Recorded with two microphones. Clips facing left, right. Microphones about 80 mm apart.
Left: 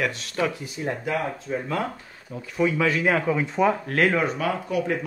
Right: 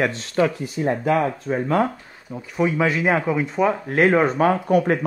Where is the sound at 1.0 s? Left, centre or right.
Right.